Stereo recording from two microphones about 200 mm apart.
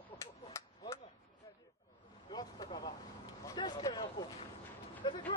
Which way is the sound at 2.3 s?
20° left (ahead or behind).